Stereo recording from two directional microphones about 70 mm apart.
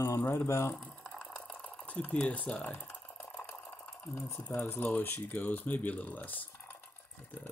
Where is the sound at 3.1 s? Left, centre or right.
Left.